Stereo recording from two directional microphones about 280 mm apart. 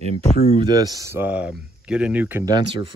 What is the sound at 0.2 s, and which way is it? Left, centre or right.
Speech, left.